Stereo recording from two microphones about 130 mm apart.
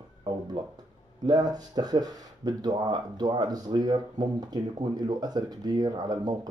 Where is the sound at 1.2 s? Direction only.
30° right (ahead or behind).